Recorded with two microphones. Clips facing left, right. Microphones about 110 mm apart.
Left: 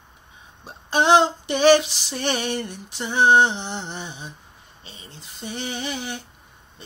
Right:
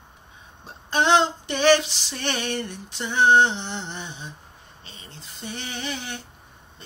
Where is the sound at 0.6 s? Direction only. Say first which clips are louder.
Left 2 dB; 10° left (ahead or behind).